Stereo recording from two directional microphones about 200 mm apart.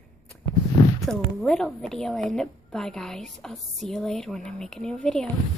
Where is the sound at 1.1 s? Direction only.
5° left (ahead or behind).